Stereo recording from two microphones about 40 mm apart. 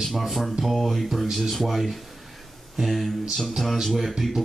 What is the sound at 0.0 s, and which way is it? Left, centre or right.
Speech, centre.